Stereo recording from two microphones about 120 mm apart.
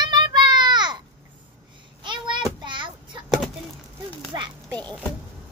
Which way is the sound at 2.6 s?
40° right (ahead or behind).